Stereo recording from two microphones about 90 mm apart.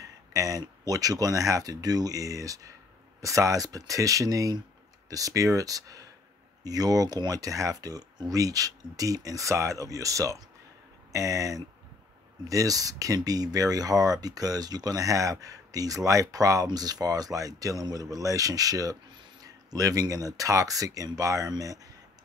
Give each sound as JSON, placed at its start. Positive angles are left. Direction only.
{"t": 0.0, "sound": "speech", "side_deg": -40}
{"t": 19.1, "sound": "a sound", "side_deg": -45}
{"t": 20.3, "sound": "speech", "side_deg": -40}